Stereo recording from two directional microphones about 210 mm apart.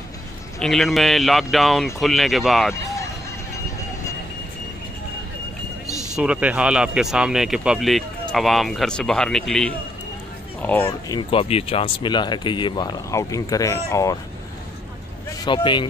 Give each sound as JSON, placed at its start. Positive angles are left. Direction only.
{"t": 0.6, "sound": "speech", "side_deg": 0}
{"t": 2.7, "sound": "music", "side_deg": 15}
{"t": 6.1, "sound": "speech", "side_deg": -5}
{"t": 10.9, "sound": "speech", "side_deg": 20}
{"t": 15.4, "sound": "speech", "side_deg": 20}